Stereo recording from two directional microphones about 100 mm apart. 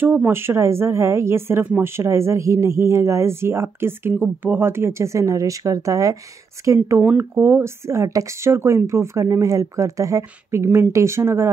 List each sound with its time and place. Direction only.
0.0 s speech: 20° right (ahead or behind)
7.0 s speech: 15° right (ahead or behind)